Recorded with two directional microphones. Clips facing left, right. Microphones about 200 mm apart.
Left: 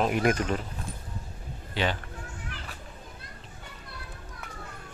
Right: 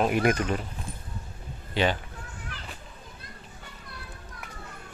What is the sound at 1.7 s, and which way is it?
Speech, 15° right (ahead or behind).